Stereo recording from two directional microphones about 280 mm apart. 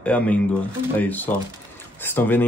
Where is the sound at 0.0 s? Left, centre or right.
Centre.